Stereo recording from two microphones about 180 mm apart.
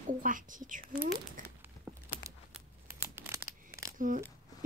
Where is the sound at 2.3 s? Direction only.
15° right (ahead or behind).